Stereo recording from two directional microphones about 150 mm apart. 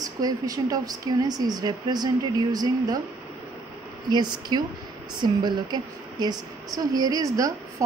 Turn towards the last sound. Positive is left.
turn(degrees=-25)  # may be behind; listen again after turning